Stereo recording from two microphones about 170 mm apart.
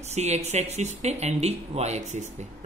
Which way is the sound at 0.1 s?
40° right (ahead or behind).